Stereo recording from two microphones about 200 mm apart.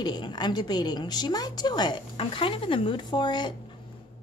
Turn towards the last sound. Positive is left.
turn(degrees=20)  # may be behind; listen again after turning